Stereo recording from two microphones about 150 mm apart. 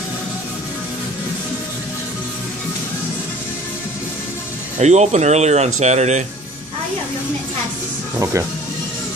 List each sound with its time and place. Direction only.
4.7 s speech: 50° right (ahead or behind)
8.2 s speech: 20° right (ahead or behind)